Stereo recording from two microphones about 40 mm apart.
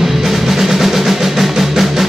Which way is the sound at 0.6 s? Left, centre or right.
Centre.